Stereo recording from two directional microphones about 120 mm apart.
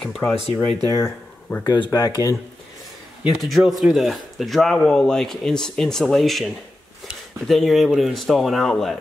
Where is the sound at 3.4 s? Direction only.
Centre (ahead or behind).